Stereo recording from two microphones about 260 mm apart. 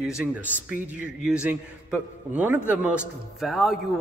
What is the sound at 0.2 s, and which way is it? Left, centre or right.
A man's voice, centre.